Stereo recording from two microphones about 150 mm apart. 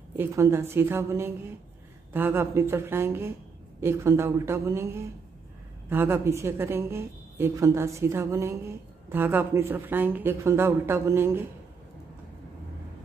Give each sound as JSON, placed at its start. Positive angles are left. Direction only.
{"t": 0.2, "sound": "a woman's voice", "side_deg": -15}